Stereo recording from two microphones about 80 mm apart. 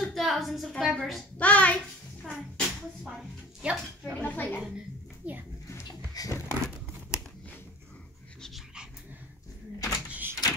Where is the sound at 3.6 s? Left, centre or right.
Centre.